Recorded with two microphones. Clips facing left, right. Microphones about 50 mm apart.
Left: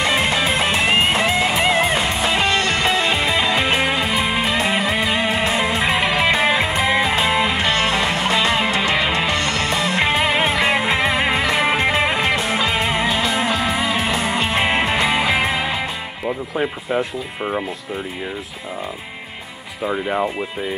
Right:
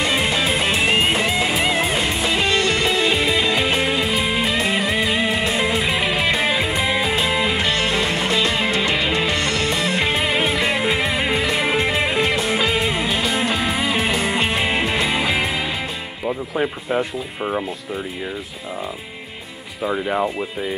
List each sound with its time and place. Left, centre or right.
0.0 s music: centre
2.6 s music: left
7.2 s music: centre
9.3 s music: left
9.8 s music: left
12.3 s music: centre
12.6 s music: left
13.3 s music: centre
14.5 s music: left
16.3 s music: centre
19.8 s speech: centre